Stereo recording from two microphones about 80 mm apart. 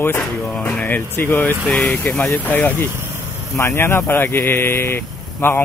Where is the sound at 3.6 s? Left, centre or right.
Left.